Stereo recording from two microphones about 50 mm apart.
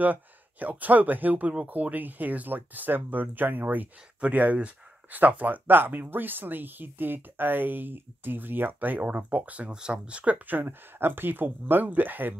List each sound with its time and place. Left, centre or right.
0.0 s speech: right